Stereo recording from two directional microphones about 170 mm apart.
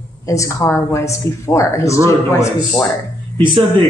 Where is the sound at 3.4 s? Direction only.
30° right (ahead or behind).